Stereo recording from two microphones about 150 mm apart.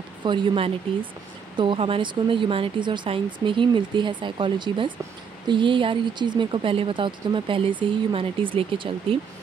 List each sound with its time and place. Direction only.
0.2 s speech: 30° right (ahead or behind)